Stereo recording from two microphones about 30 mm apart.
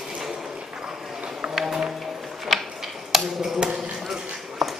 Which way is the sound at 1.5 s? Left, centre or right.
Centre.